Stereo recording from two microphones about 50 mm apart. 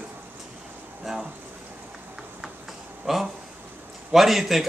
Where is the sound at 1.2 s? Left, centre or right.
Right.